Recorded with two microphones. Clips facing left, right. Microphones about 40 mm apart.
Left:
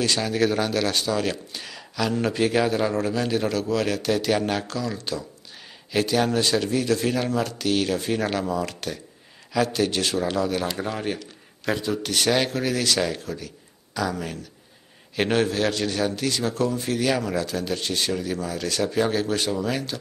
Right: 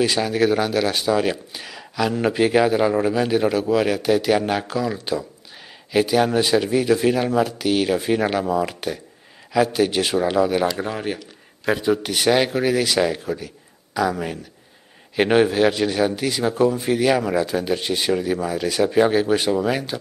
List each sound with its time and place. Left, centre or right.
0.0 s speech: centre